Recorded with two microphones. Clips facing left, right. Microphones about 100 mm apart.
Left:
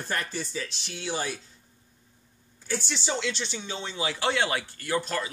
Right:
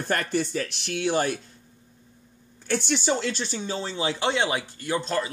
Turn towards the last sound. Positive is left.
turn(degrees=-25)  # may be behind; listen again after turning